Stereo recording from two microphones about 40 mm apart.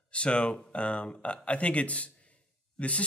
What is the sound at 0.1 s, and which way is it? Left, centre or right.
Speech, left.